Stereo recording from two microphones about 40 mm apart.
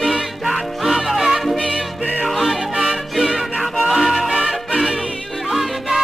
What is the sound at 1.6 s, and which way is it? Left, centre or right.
Music, right.